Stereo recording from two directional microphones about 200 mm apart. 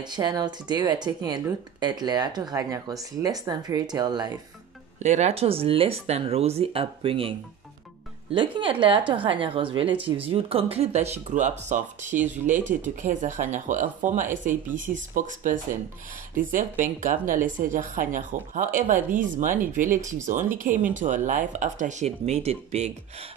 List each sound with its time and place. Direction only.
0.0 s speech: 20° right (ahead or behind)
4.9 s speech: 35° right (ahead or behind)
16.8 s speech: 40° right (ahead or behind)